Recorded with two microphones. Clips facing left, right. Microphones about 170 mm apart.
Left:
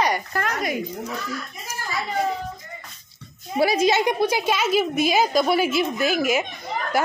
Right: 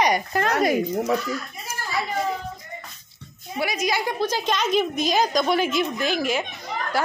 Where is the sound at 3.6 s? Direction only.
30° left (ahead or behind).